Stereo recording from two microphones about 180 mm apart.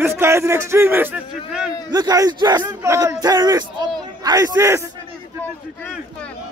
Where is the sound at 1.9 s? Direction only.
20° right (ahead or behind).